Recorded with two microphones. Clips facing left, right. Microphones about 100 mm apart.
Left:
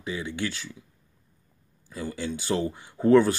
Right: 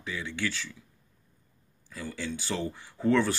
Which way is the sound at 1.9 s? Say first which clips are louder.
Left 4 dB; 15° left (ahead or behind).